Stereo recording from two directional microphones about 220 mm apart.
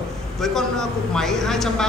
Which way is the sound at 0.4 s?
Centre (ahead or behind).